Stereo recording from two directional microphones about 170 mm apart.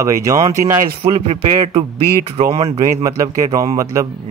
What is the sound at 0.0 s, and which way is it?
Speech, 20° right (ahead or behind).